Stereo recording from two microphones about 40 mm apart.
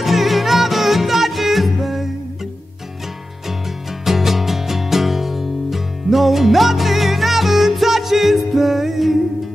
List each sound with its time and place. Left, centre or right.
0.0 s music: centre
4.0 s music: centre